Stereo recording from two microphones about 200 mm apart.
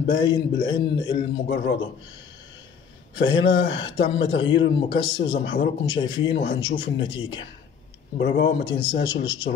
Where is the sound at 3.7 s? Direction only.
25° left (ahead or behind).